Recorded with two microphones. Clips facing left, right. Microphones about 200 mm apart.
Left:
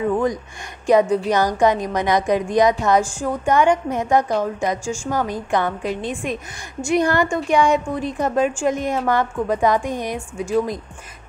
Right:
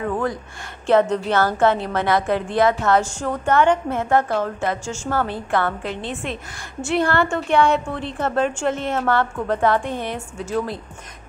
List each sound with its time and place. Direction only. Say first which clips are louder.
0.0 s a woman's voice: left 4 dB; 15° left (ahead or behind)